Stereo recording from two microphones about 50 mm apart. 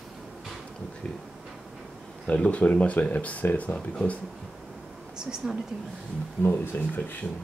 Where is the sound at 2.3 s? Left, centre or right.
Centre.